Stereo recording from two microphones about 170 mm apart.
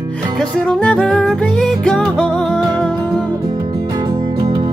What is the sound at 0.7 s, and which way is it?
Music, 5° left (ahead or behind).